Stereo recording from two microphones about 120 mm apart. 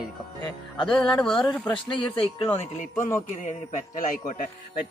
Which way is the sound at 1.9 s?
45° left (ahead or behind).